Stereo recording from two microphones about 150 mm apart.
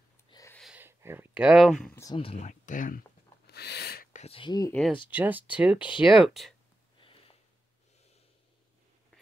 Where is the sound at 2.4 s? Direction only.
60° left (ahead or behind).